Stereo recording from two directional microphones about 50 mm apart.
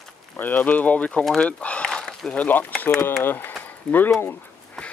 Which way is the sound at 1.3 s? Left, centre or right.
Left.